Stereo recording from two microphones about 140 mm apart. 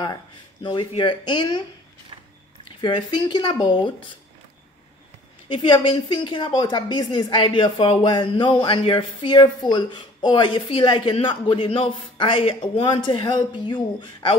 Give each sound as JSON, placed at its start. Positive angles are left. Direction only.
{"t": 0.0, "sound": "a woman's voice", "side_deg": 30}
{"t": 2.8, "sound": "a woman's voice", "side_deg": 35}
{"t": 5.5, "sound": "a woman's voice", "side_deg": 35}